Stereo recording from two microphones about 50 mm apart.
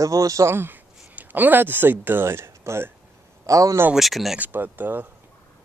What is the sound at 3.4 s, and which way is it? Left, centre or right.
Speech, right.